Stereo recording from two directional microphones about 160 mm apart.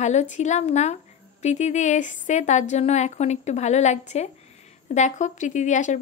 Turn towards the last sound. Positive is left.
turn(degrees=50)  # may be behind; listen again after turning